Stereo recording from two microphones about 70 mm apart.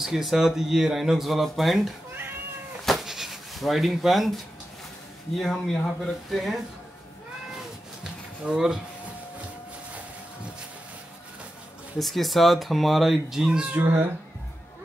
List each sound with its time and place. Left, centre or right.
0.0 s speech: centre
2.8 s a sound: centre
5.4 s speech: centre
7.5 s a sound: centre
12.0 s speech: centre
13.5 s speech: centre
13.7 s speech: right